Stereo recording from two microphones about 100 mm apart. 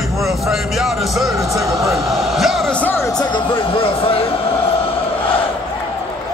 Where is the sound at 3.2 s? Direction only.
55° left (ahead or behind); by 4.8 s 70° left (ahead or behind).